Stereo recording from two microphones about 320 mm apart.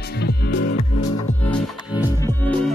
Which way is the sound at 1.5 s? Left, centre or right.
Centre.